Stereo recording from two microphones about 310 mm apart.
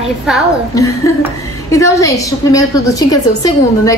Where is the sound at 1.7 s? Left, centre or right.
Centre.